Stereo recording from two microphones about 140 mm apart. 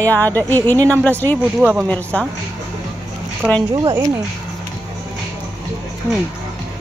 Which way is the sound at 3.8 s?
25° right (ahead or behind).